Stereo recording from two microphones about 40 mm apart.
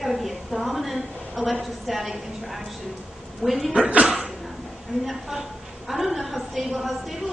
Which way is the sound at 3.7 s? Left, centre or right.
Right.